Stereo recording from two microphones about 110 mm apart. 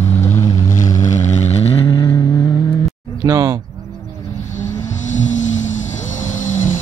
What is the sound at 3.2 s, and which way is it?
Speech, 30° right (ahead or behind).